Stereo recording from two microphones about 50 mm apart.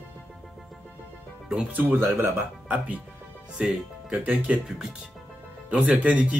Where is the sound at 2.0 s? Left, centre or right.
Right.